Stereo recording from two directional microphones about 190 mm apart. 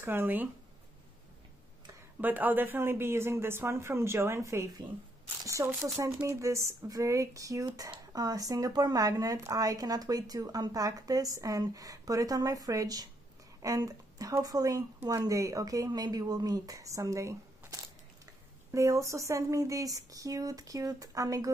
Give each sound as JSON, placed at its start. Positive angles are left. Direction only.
{"t": 0.0, "sound": "speech", "side_deg": -10}
{"t": 2.2, "sound": "speech", "side_deg": -10}